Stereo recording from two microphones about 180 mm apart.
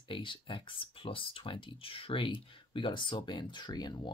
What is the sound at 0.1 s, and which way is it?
Speech, 25° left (ahead or behind).